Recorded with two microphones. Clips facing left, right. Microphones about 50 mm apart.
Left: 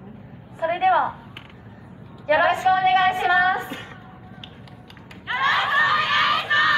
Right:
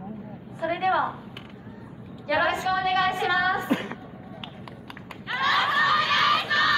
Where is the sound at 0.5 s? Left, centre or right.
Left.